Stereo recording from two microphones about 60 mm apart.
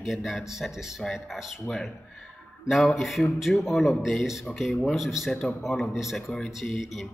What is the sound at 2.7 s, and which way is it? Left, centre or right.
Speech, centre.